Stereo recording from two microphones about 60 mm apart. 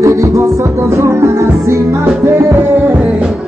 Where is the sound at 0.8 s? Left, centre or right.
Right.